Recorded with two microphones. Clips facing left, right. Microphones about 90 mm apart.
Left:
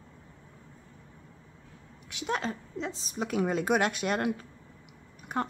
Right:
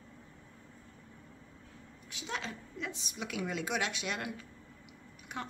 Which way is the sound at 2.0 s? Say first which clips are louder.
Left 8 dB; 60° left (ahead or behind).